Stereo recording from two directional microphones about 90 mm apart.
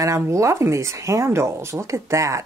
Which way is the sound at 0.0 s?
35° right (ahead or behind).